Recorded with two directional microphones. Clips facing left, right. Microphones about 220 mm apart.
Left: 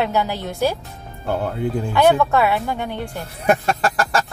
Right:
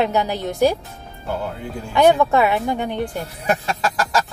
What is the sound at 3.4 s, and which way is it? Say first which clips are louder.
Speech: left 4 dB; 55° left (ahead or behind).